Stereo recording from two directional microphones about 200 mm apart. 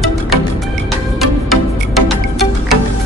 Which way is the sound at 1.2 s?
Centre (ahead or behind).